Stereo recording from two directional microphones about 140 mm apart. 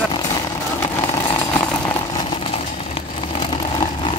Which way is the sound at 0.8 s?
30° left (ahead or behind).